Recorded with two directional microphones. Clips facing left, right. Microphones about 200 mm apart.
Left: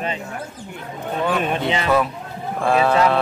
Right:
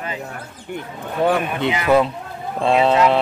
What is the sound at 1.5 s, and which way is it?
Speech, 25° left (ahead or behind).